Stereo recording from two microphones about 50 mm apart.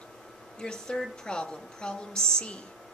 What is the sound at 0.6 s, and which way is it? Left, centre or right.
Speech, centre.